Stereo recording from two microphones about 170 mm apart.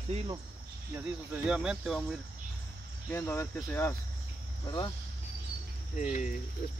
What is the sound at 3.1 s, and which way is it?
Speech, 15° left (ahead or behind).